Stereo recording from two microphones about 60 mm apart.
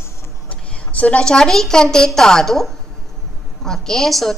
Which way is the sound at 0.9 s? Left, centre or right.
Left.